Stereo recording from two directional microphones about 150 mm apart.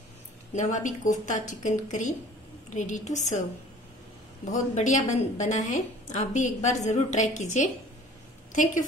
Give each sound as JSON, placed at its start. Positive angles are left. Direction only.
{"t": 0.6, "sound": "a woman's voice", "side_deg": 55}
{"t": 4.5, "sound": "a woman's voice", "side_deg": 55}